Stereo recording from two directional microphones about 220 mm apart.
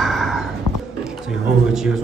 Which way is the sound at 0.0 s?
Centre (ahead or behind).